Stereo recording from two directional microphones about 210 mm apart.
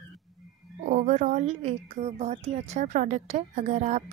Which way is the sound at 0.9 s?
35° right (ahead or behind).